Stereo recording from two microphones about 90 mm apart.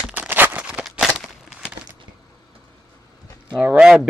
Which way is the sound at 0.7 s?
10° right (ahead or behind).